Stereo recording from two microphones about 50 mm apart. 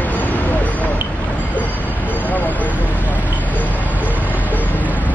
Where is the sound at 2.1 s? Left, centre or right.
Left.